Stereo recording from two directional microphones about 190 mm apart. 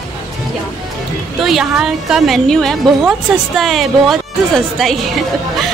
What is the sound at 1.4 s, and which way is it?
A woman's voice, centre (ahead or behind).